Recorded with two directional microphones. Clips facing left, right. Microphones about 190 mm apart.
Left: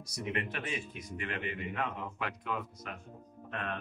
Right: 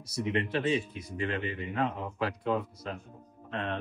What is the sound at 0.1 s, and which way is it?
A man's voice, 30° right (ahead or behind).